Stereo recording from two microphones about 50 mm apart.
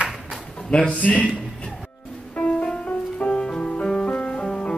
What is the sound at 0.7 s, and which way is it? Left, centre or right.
Speech, centre.